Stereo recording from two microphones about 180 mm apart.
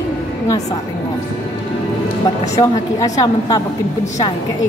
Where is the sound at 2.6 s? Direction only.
20° left (ahead or behind).